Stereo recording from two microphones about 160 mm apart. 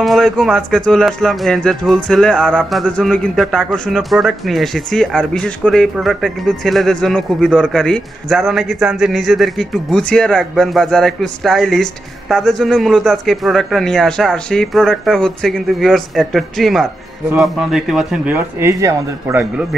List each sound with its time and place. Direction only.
0.0 s speech: centre (ahead or behind)